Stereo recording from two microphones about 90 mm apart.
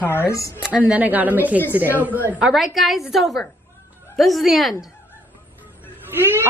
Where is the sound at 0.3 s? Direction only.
40° left (ahead or behind).